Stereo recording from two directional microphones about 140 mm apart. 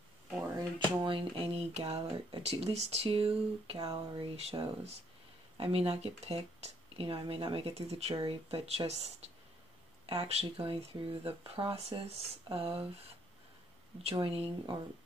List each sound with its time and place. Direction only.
1.0 s speech: 40° right (ahead or behind)
3.8 s speech: 25° right (ahead or behind)
4.4 s speech: 45° right (ahead or behind)
14.1 s speech: 40° right (ahead or behind)